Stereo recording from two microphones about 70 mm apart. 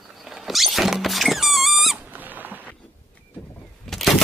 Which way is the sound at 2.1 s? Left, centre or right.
Right.